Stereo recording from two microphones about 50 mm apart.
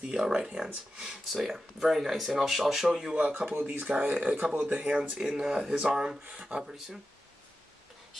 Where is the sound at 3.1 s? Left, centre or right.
Right.